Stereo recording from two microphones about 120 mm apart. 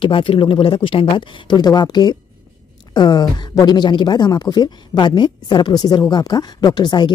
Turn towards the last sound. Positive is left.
turn(degrees=35)  # may be behind; listen again after turning